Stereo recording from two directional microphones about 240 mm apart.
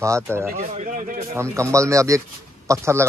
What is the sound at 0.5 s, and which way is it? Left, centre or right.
Speech, right.